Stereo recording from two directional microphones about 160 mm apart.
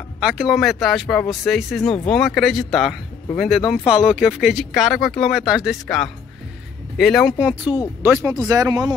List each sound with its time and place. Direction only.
0.2 s speech: 5° right (ahead or behind); by 8.9 s 25° right (ahead or behind)